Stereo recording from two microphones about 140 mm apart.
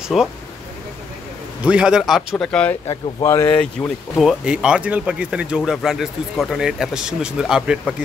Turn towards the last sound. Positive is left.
turn(degrees=-5)  # may be behind; listen again after turning